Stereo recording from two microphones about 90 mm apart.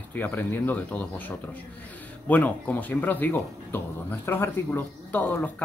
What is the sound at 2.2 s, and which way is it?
Speech, 15° left (ahead or behind).